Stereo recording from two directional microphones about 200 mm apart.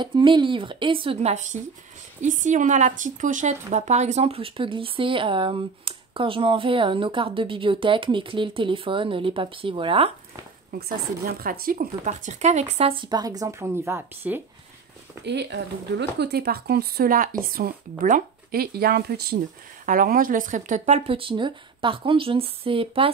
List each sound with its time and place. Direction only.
0.0 s speech: 25° right (ahead or behind)
10.7 s speech: 50° right (ahead or behind); by 14.4 s 10° right (ahead or behind)
15.2 s speech: 60° right (ahead or behind); by 23.1 s 25° right (ahead or behind)